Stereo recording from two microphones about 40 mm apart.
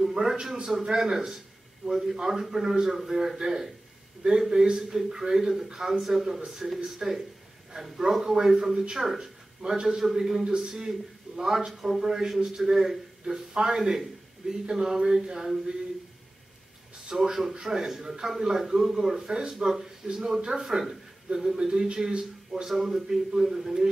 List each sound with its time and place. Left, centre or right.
0.0 s a man's voice: centre
17.1 s a man's voice: centre